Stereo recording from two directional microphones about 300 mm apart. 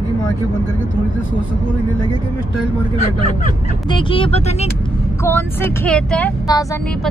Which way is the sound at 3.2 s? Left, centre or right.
Left.